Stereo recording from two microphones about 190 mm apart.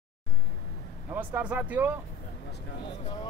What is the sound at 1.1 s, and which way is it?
Speech, 10° right (ahead or behind).